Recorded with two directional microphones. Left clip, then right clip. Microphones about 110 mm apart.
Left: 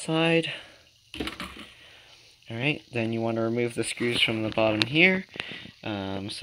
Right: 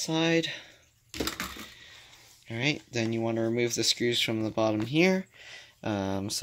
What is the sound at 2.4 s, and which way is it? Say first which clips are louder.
Speech: left 1 dB; 10° left (ahead or behind).